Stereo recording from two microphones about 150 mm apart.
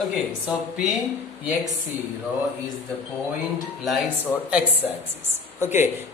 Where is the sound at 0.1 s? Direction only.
Centre (ahead or behind).